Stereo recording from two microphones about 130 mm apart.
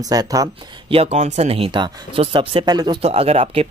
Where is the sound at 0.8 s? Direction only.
50° right (ahead or behind); by 3.0 s 30° right (ahead or behind).